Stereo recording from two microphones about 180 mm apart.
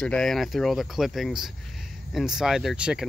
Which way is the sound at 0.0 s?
5° left (ahead or behind).